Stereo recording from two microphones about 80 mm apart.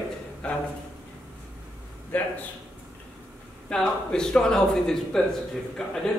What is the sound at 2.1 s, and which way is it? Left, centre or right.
Speech, left.